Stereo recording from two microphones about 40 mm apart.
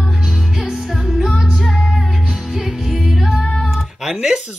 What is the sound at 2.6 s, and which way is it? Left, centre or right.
Music, centre.